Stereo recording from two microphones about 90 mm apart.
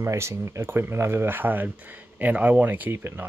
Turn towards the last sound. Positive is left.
turn(degrees=-25)  # may be behind; listen again after turning